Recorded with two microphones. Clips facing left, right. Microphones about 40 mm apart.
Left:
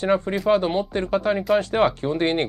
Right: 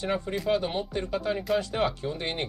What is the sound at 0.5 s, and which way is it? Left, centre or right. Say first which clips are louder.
Speech: left 8 dB; left.